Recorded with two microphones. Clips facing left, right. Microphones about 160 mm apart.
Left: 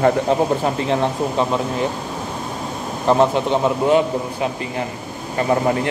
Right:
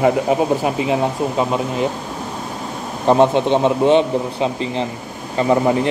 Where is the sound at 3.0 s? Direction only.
20° right (ahead or behind).